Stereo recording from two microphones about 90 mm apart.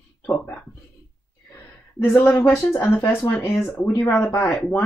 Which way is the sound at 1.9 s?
25° left (ahead or behind).